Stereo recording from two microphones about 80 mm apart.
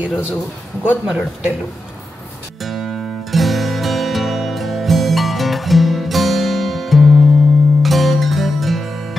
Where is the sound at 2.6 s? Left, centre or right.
Centre.